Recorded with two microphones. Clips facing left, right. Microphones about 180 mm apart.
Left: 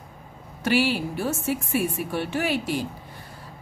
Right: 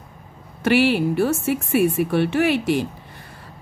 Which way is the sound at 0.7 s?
65° right (ahead or behind).